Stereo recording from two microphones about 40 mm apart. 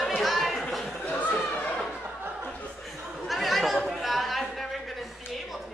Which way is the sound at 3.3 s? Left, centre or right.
Centre.